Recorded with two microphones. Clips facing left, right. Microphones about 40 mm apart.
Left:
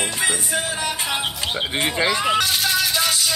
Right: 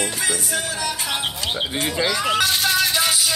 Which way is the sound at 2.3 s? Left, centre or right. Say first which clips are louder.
Right 1 dB; centre.